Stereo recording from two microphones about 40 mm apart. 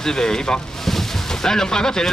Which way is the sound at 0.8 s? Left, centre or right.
Centre.